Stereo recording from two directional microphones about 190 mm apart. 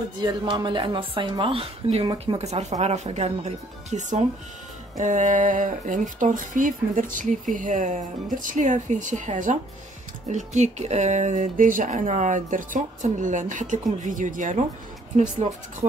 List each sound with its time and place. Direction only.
0.2 s a woman's voice: 20° right (ahead or behind); by 14.6 s 40° right (ahead or behind)